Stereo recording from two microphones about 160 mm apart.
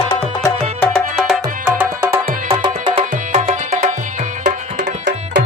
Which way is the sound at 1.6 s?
10° right (ahead or behind).